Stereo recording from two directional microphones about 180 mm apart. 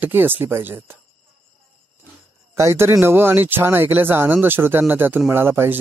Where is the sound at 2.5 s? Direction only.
15° right (ahead or behind).